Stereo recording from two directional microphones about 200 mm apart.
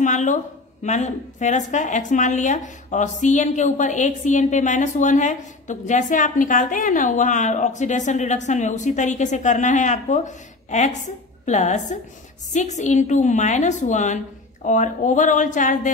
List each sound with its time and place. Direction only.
0.0 s speech: 35° left (ahead or behind)